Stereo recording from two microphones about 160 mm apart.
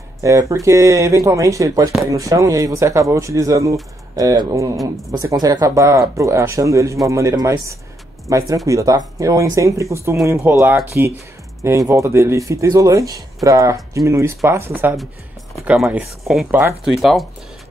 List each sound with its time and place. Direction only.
0.2 s speech: 20° right (ahead or behind); by 17.3 s centre (ahead or behind)